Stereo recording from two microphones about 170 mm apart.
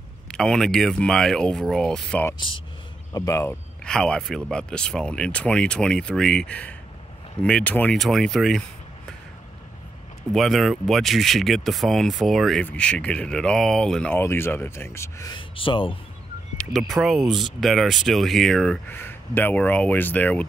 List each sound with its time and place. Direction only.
0.3 s speech: 5° left (ahead or behind)
2.3 s speech: 30° left (ahead or behind)
3.1 s speech: 20° left (ahead or behind)
3.8 s speech: 5° left (ahead or behind)
10.3 s speech: centre (ahead or behind); by 16.0 s 30° left (ahead or behind)
16.7 s speech: centre (ahead or behind)